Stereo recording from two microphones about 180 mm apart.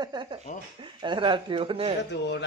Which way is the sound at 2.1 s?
70° left (ahead or behind).